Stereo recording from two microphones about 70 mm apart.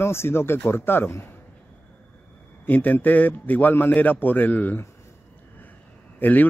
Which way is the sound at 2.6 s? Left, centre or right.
Left.